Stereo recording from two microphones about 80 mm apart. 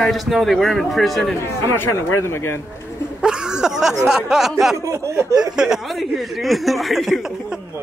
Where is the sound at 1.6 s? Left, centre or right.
Left.